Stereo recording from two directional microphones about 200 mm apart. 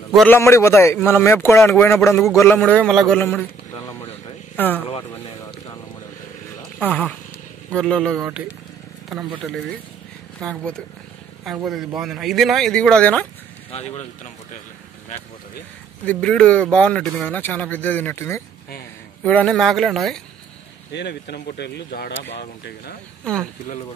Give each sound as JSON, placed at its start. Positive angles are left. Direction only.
{"t": 0.1, "sound": "a man's voice", "side_deg": 5}
{"t": 4.6, "sound": "speech", "side_deg": 10}
{"t": 6.8, "sound": "speech", "side_deg": 10}
{"t": 8.1, "sound": "speech", "side_deg": -10}
{"t": 9.4, "sound": "speech", "side_deg": 0}
{"t": 13.7, "sound": "speech", "side_deg": 30}
{"t": 16.1, "sound": "speech", "side_deg": 5}
{"t": 20.9, "sound": "speech", "side_deg": 60}